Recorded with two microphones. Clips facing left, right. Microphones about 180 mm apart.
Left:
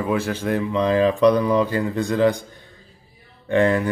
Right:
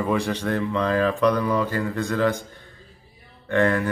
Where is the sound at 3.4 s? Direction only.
15° left (ahead or behind).